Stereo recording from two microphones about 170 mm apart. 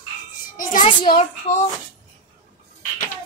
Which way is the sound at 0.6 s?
55° left (ahead or behind).